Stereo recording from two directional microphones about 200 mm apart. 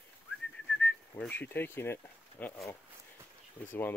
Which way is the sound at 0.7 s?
5° left (ahead or behind).